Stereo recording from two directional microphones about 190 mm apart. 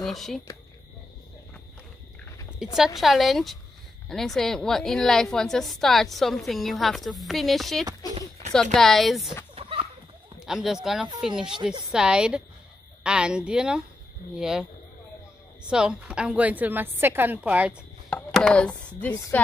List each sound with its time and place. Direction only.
0.0 s a woman's voice: centre (ahead or behind)
2.6 s a woman's voice: centre (ahead or behind)
8.0 s a sound: 20° left (ahead or behind)
8.7 s a woman's voice: centre (ahead or behind)
9.6 s a sound: 30° right (ahead or behind)
10.4 s a woman's voice: centre (ahead or behind)
15.7 s a woman's voice: 5° right (ahead or behind)
18.1 s chopping: 5° left (ahead or behind)
19.3 s a woman's voice: 10° left (ahead or behind)